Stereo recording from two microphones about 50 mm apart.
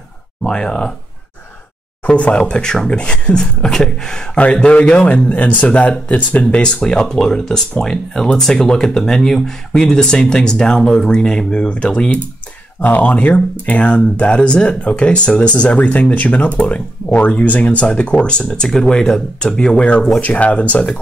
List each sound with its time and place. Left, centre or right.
0.4 s speech: centre
2.0 s speech: left
4.4 s speech: left
6.5 s speech: centre
12.8 s speech: left
20.2 s speech: left